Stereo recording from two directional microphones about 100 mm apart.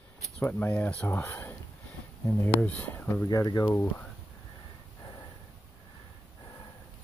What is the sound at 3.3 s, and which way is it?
Speech, 40° left (ahead or behind).